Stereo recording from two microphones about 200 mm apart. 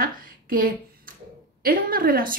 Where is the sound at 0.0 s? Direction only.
45° right (ahead or behind).